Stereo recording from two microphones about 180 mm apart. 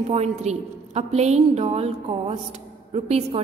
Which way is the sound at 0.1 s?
40° right (ahead or behind).